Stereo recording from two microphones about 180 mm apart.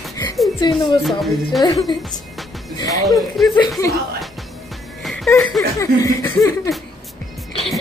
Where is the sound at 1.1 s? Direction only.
Centre (ahead or behind).